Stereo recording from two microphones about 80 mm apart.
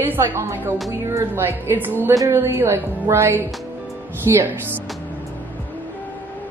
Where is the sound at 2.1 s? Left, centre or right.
Right.